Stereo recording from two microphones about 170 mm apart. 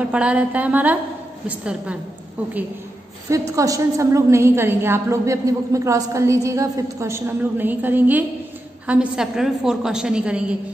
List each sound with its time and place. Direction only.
0.0 s a woman's voice: 5° right (ahead or behind)
3.3 s a woman's voice: 20° right (ahead or behind)